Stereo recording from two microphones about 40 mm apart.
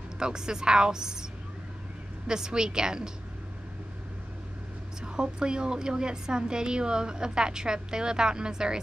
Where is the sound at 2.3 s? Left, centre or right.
Centre.